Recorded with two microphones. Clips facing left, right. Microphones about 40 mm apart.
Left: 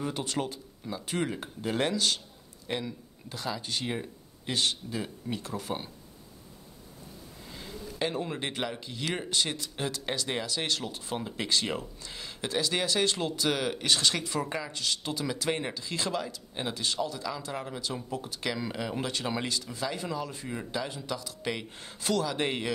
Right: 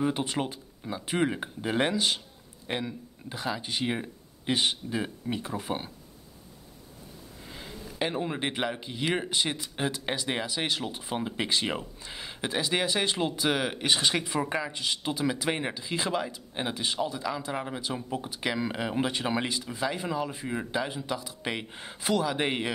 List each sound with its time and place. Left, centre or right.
0.0 s speech: right
7.4 s speech: centre